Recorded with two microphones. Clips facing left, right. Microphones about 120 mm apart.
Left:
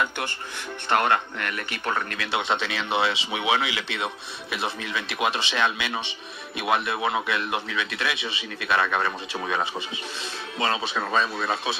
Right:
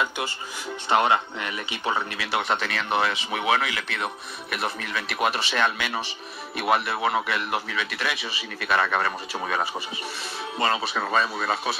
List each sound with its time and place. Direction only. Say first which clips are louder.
0.8 s speech: right 1 dB; 10° right (ahead or behind)
2.5 s speech: even; 25° left (ahead or behind)
7.0 s a man's voice: right 1 dB; 5° left (ahead or behind)
10.6 s a man's voice: right 1 dB; 5° right (ahead or behind)